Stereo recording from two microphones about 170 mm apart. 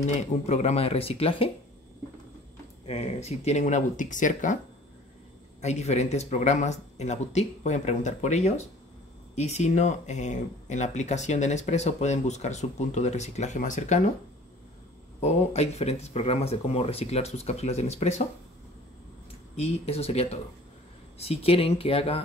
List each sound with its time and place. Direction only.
0.0 s speech: 40° left (ahead or behind)
2.9 s speech: 40° left (ahead or behind)
5.6 s speech: 40° left (ahead or behind)
15.1 s speech: 40° left (ahead or behind)
19.5 s speech: 40° left (ahead or behind)